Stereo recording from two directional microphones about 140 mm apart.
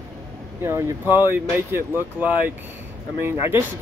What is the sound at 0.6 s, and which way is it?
Speech, 15° right (ahead or behind).